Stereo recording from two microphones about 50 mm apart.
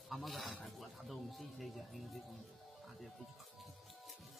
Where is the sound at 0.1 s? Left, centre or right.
Centre.